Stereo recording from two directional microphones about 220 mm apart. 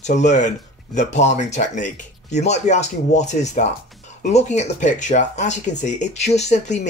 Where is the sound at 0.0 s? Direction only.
30° left (ahead or behind).